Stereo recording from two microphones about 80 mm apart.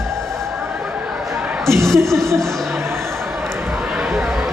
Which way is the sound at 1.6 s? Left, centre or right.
Centre.